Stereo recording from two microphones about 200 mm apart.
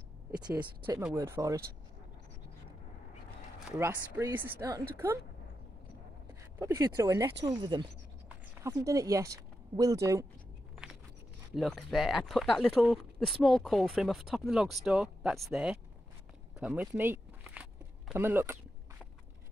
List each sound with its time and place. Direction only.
0.6 s speech: 10° right (ahead or behind)
3.7 s speech: 10° right (ahead or behind)
6.6 s speech: 15° right (ahead or behind)
11.5 s speech: centre (ahead or behind)
16.5 s walk: 5° right (ahead or behind)